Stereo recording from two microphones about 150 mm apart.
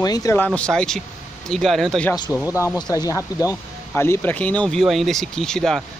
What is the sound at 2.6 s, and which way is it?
Speech, 20° left (ahead or behind).